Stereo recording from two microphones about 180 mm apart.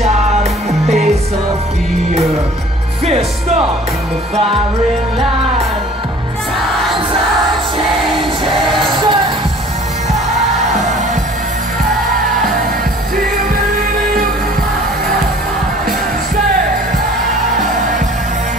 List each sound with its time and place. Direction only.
3.1 s speech: 35° right (ahead or behind)
8.9 s music: 25° right (ahead or behind)